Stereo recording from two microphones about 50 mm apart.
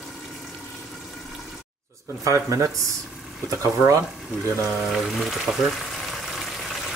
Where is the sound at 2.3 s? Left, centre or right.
Right.